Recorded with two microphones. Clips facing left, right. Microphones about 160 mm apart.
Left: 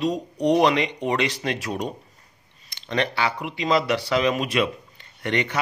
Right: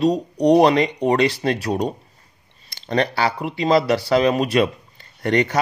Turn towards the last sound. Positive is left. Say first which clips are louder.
# right 6 dB
turn(degrees=-40)  # may be behind; listen again after turning